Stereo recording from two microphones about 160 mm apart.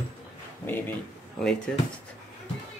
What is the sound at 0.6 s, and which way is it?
Speech, 10° left (ahead or behind).